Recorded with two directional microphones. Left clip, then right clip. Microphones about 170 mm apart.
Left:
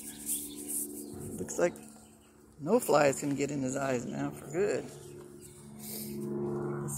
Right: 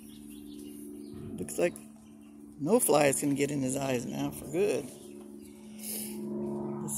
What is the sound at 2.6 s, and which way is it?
Speech, 20° right (ahead or behind).